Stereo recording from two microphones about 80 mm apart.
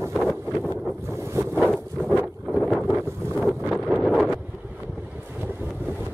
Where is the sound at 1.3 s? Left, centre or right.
Right.